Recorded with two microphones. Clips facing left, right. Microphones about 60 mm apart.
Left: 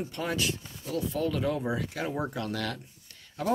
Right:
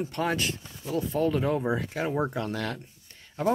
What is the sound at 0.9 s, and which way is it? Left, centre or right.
Speech, right.